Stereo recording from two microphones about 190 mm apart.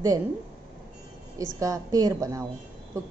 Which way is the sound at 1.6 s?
20° right (ahead or behind).